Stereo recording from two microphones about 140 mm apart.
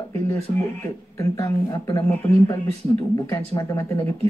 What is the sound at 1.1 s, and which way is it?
Speech, 20° left (ahead or behind).